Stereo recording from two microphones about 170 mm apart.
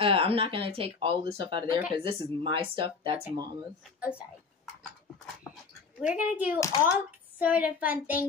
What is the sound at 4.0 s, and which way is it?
Speech, 5° right (ahead or behind).